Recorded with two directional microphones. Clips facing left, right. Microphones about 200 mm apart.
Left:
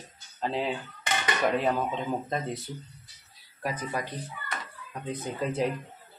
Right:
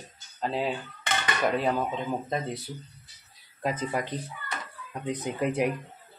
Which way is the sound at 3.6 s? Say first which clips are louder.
Right 3 dB; 20° right (ahead or behind).